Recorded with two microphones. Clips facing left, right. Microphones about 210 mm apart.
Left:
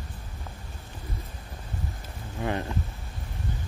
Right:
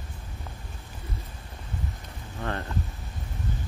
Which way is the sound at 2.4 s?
10° left (ahead or behind).